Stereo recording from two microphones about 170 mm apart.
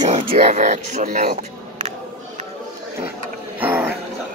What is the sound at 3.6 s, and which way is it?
Dog, 10° right (ahead or behind).